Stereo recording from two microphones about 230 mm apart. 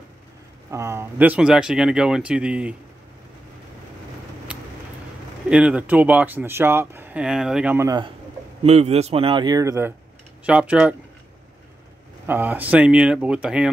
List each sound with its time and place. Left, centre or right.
0.7 s speech: centre
4.5 s a sound: centre
5.5 s speech: centre
8.6 s speech: right; by 11.0 s centre
12.3 s speech: centre